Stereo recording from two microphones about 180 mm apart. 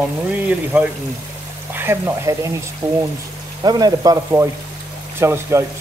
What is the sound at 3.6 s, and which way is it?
Speech, 20° right (ahead or behind).